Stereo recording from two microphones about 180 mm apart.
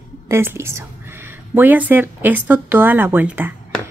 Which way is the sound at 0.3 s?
15° right (ahead or behind).